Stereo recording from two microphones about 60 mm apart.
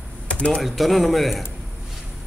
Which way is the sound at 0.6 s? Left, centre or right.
Centre.